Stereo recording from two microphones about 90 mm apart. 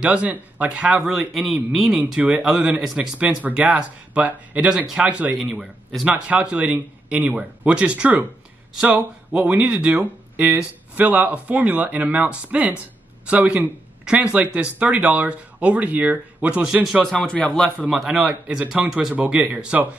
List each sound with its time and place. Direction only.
0.0 s speech: 15° right (ahead or behind)
5.4 s speech: 5° right (ahead or behind)
6.2 s speech: 15° right (ahead or behind)
16.8 s speech: centre (ahead or behind)
17.2 s a man's voice: 15° left (ahead or behind)
17.8 s speech: 5° right (ahead or behind)